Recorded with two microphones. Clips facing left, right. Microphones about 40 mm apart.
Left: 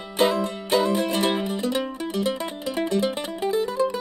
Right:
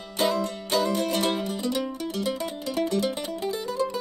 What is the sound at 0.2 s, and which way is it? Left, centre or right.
Music, left.